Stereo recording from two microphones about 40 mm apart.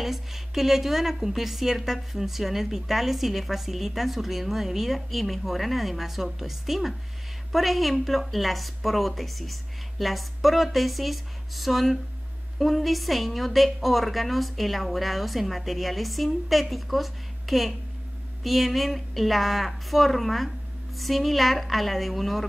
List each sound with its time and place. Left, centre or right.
0.0 s a woman's voice: centre